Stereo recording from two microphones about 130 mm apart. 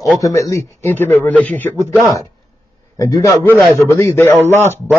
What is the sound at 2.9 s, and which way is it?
A man's voice, 25° left (ahead or behind).